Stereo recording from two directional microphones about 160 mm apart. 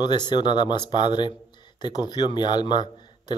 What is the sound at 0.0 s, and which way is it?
Speech, 30° left (ahead or behind).